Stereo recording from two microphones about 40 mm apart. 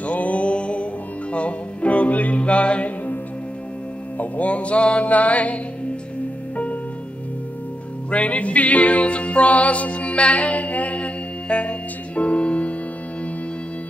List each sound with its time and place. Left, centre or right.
0.0 s music: left
4.2 s music: left
8.1 s music: left